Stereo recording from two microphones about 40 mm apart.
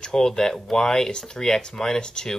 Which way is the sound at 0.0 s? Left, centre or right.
Centre.